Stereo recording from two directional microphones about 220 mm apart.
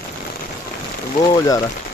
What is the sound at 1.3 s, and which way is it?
Speech, 15° left (ahead or behind).